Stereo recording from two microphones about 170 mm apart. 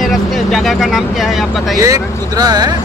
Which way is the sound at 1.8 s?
20° right (ahead or behind).